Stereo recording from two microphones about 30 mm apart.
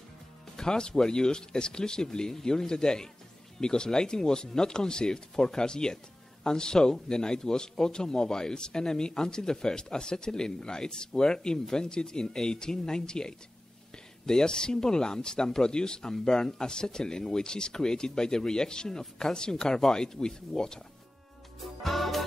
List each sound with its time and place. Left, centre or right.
0.6 s a man's voice: left
21.5 s music: centre